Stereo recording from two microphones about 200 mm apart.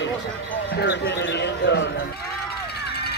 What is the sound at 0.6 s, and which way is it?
Music, 60° left (ahead or behind).